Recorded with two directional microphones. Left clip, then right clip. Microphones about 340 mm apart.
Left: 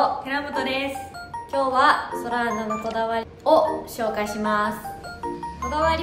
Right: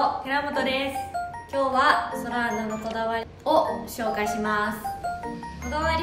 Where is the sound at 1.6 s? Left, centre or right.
Centre.